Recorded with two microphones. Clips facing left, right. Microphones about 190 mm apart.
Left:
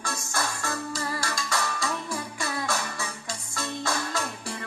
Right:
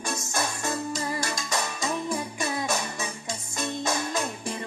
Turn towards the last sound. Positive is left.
turn(degrees=-20)  # may be behind; listen again after turning